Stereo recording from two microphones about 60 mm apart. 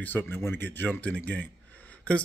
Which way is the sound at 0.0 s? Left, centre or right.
Left.